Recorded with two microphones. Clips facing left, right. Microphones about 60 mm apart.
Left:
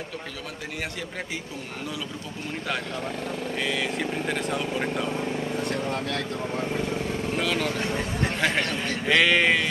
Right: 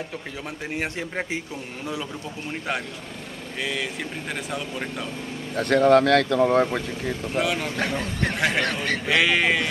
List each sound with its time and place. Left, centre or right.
3.6 s speech: centre
5.6 s speech: right
7.3 s speech: centre